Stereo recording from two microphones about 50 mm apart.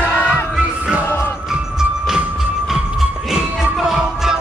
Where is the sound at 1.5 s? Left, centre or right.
Centre.